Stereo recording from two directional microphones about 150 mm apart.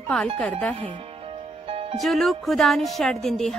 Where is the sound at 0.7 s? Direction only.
35° right (ahead or behind).